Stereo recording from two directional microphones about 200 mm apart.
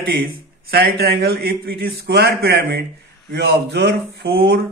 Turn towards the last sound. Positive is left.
turn(degrees=-55)  # may be behind; listen again after turning